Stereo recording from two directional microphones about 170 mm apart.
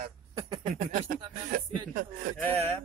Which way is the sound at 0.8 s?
55° right (ahead or behind).